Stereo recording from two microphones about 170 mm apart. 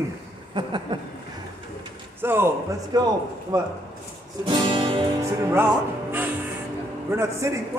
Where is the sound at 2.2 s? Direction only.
15° right (ahead or behind).